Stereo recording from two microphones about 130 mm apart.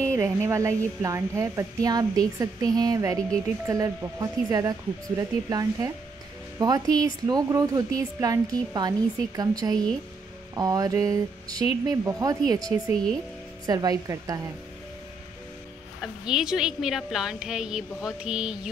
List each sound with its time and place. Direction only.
0.0 s a woman's voice: 20° right (ahead or behind)
16.0 s a woman's voice: 5° right (ahead or behind)